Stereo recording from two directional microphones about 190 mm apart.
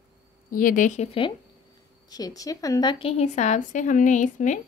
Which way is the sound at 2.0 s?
20° left (ahead or behind).